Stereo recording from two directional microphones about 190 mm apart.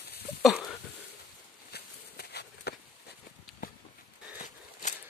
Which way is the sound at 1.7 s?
55° left (ahead or behind).